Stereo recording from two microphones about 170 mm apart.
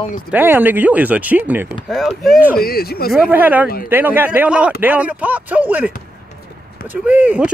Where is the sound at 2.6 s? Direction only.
65° left (ahead or behind).